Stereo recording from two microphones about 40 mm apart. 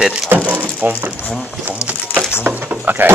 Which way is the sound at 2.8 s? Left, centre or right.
Right.